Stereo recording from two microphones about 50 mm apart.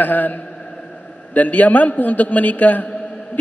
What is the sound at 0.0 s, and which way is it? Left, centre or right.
A man's voice, left.